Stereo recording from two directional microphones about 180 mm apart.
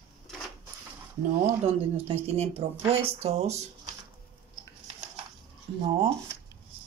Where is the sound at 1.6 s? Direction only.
35° right (ahead or behind).